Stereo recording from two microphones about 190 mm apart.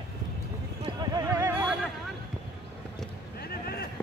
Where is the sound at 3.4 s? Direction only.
55° left (ahead or behind).